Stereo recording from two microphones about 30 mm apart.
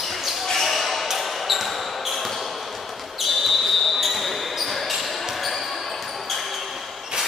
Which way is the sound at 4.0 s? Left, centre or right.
Centre.